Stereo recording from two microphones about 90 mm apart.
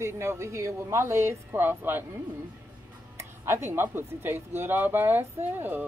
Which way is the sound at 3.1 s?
30° right (ahead or behind).